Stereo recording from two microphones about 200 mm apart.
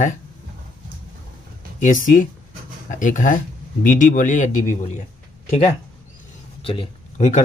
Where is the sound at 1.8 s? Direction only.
40° left (ahead or behind).